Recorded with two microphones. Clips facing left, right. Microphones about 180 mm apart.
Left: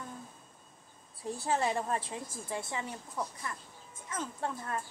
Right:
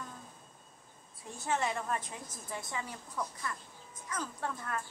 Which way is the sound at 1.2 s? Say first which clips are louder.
Left 3 dB; 35° left (ahead or behind).